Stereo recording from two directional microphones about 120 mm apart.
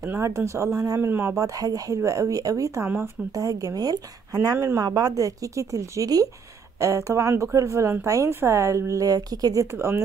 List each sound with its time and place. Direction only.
0.0 s a woman's voice: 25° right (ahead or behind)
4.6 s speech: 20° right (ahead or behind)
4.8 s speech: 30° right (ahead or behind)